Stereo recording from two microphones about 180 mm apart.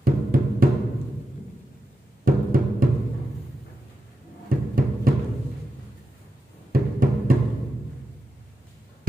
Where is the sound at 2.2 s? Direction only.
50° right (ahead or behind).